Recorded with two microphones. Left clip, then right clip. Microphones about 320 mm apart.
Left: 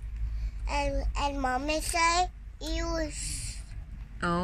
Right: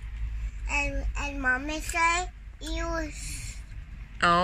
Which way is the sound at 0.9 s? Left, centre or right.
Centre.